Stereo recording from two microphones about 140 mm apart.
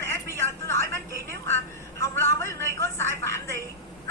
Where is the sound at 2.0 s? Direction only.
15° left (ahead or behind).